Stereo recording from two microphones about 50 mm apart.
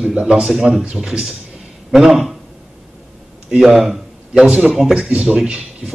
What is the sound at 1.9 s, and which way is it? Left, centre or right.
Speech, centre.